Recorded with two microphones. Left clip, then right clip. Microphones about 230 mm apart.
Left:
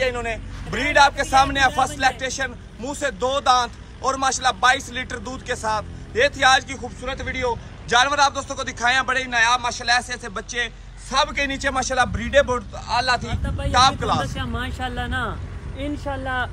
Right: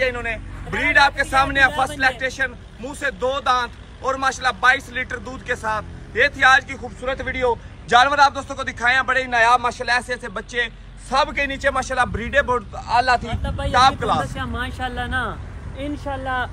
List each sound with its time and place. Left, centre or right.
0.0 s a man's voice: centre
13.4 s speech: right
13.7 s a man's voice: centre